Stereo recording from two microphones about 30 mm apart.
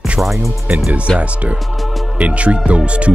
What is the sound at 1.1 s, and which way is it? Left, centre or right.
Speech, right.